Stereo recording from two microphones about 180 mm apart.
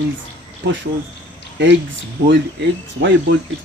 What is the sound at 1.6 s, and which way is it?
Speech, 90° right.